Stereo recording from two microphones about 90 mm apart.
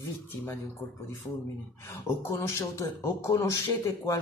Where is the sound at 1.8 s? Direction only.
25° left (ahead or behind).